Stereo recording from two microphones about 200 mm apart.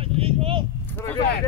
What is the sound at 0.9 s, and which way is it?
Speech, 10° left (ahead or behind).